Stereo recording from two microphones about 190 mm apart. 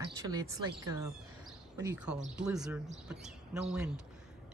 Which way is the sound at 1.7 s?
15° right (ahead or behind).